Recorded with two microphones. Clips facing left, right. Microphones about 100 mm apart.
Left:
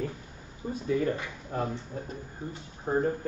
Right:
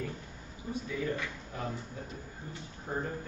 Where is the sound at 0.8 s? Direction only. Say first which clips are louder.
Left 8 dB; 45° left (ahead or behind).